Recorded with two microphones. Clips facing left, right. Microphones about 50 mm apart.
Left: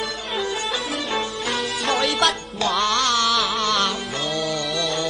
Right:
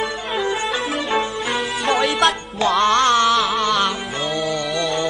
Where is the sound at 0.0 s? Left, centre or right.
Right.